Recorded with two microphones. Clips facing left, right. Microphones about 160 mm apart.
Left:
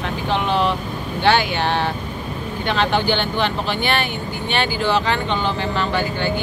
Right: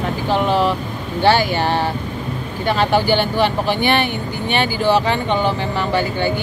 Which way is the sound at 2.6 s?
10° right (ahead or behind).